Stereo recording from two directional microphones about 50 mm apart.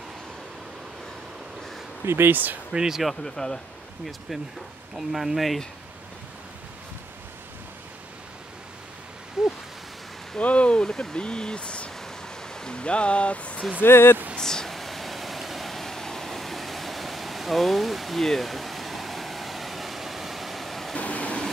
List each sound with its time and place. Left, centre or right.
2.0 s speech: right
2.7 s speech: centre
3.3 s speech: centre
4.9 s speech: centre
9.4 s a sound: centre
10.4 s speech: left
13.7 s speech: left
14.3 s a sound: centre
20.9 s train: left